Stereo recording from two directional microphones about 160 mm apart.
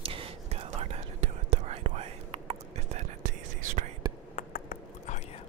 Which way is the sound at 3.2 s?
55° right (ahead or behind).